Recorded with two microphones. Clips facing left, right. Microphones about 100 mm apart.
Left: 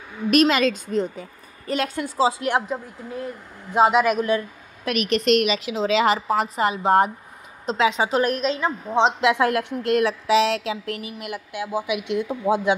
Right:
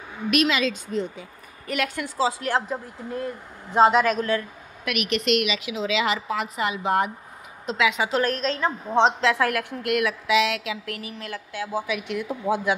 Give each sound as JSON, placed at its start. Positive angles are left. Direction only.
{"t": 0.3, "sound": "a woman's voice", "side_deg": 45}
{"t": 1.7, "sound": "a woman's voice", "side_deg": 30}
{"t": 3.7, "sound": "a woman's voice", "side_deg": 10}
{"t": 4.4, "sound": "a woman's voice", "side_deg": 35}
{"t": 8.2, "sound": "a woman's voice", "side_deg": 10}
{"t": 9.2, "sound": "a woman's voice", "side_deg": 20}
{"t": 11.1, "sound": "a woman's voice", "side_deg": 15}